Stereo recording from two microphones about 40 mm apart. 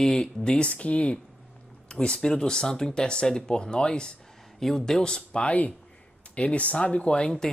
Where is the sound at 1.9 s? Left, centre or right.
Centre.